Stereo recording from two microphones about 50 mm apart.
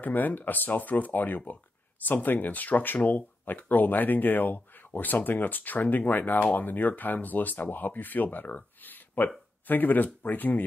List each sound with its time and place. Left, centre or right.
0.0 s speech: left